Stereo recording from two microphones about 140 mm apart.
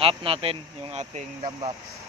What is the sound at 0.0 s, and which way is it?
Speech, 40° right (ahead or behind).